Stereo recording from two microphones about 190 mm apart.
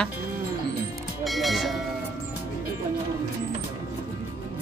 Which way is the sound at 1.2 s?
Centre (ahead or behind).